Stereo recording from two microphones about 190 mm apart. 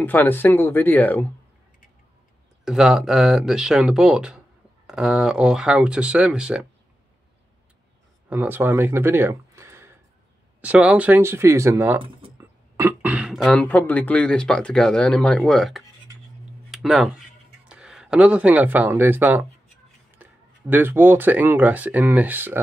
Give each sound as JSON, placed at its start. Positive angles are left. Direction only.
{"t": 0.0, "sound": "speech", "side_deg": 10}
{"t": 2.6, "sound": "speech", "side_deg": 0}
{"t": 8.3, "sound": "speech", "side_deg": -10}